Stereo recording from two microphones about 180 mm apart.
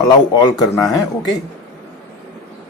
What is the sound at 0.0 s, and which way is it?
Speech, 25° left (ahead or behind).